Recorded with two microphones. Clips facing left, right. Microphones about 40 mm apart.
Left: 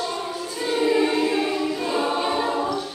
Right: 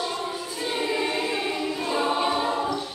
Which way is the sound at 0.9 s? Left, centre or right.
Centre.